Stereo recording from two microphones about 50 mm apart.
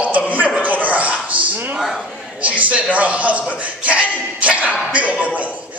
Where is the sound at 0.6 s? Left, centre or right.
Right.